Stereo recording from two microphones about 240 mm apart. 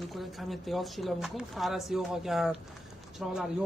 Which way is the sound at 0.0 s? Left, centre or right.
Centre.